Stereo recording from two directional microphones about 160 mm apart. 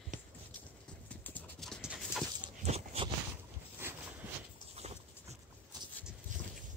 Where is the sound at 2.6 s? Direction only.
40° right (ahead or behind).